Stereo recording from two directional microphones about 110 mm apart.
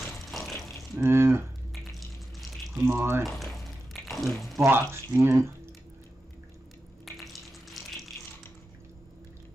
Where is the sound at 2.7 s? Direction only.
20° right (ahead or behind).